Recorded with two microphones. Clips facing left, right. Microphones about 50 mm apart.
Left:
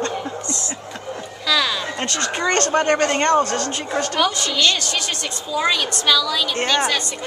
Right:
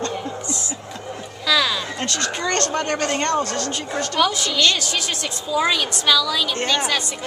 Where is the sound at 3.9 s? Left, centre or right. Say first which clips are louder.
Left 3 dB; left.